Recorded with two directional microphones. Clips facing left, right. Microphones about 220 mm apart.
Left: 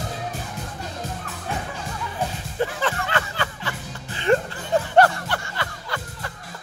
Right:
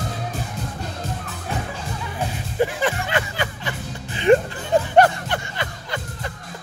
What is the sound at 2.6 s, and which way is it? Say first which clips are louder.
Music: right 3 dB; 15° right (ahead or behind).